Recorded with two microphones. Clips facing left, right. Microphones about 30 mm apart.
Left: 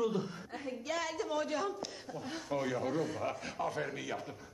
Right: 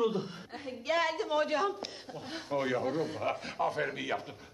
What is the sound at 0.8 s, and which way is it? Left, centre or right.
A man's voice, right.